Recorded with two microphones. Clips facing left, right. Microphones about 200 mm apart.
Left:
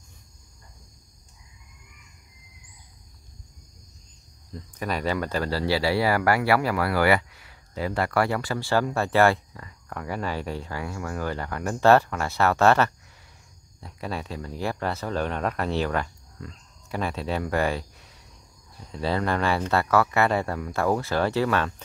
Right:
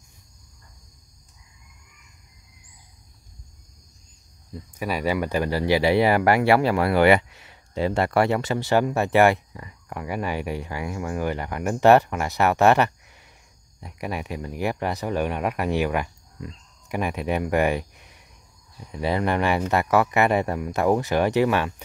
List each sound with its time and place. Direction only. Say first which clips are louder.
4.6 s speech: right 2 dB; 10° right (ahead or behind)